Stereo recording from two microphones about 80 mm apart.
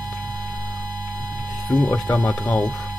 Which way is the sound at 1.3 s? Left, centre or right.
Right.